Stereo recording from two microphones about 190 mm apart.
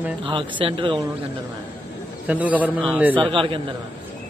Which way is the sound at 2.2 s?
10° right (ahead or behind).